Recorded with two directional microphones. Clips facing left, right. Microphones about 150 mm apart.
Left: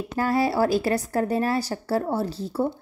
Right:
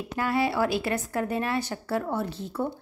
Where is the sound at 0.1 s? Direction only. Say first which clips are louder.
Left 3 dB; 40° left (ahead or behind).